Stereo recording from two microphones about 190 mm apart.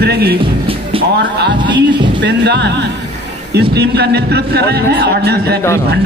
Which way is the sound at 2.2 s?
65° right (ahead or behind).